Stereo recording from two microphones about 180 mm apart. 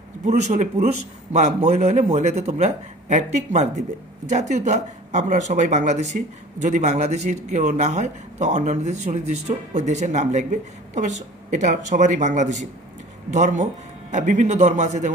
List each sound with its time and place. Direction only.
0.2 s a man's voice: 40° right (ahead or behind)